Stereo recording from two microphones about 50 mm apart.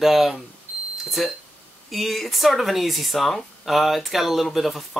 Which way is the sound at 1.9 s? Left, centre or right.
Centre.